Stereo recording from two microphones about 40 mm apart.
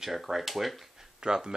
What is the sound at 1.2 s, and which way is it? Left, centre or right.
Speech, right.